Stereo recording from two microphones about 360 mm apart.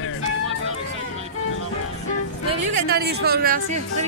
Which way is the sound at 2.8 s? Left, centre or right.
Right.